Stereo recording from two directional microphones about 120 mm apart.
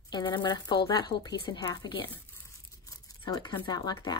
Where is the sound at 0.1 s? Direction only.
40° left (ahead or behind).